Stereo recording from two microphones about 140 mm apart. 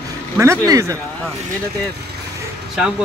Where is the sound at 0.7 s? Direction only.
20° right (ahead or behind).